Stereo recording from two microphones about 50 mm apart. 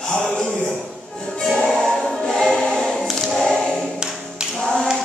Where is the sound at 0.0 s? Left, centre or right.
Centre.